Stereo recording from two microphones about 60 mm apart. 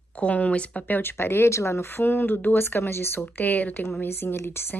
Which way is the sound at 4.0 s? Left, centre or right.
Left.